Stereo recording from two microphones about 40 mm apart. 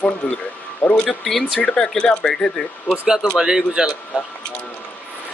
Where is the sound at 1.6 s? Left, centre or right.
Centre.